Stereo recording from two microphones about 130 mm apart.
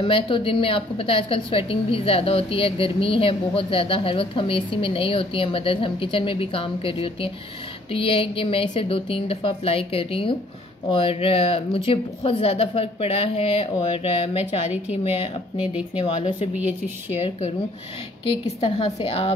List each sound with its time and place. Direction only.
0.0 s a woman's voice: 40° left (ahead or behind)
15.5 s speech: 10° right (ahead or behind)
16.0 s a woman's voice: 45° left (ahead or behind)
16.5 s speech: 10° right (ahead or behind)
18.6 s a woman's voice: 40° left (ahead or behind)